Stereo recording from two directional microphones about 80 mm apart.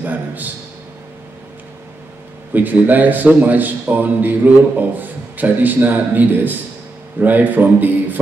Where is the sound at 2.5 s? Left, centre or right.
Right.